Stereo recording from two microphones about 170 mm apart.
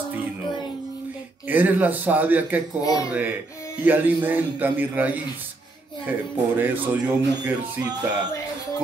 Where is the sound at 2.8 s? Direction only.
20° left (ahead or behind).